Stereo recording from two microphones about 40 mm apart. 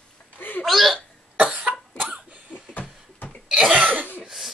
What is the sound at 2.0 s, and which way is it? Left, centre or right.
Cough, right.